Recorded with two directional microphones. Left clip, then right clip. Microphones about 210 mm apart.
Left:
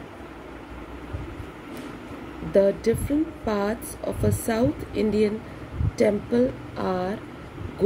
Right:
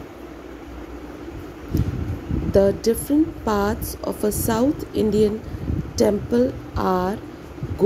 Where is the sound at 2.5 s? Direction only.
25° right (ahead or behind).